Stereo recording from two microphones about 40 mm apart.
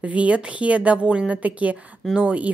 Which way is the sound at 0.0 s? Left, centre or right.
Right.